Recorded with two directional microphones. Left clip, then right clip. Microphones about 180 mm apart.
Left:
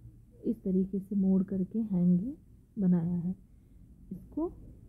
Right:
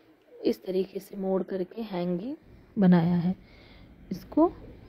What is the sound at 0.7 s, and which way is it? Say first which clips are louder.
A woman's voice: right 3 dB; 15° right (ahead or behind).